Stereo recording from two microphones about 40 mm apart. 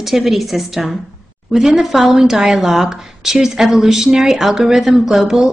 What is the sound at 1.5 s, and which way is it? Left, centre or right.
Speech, centre.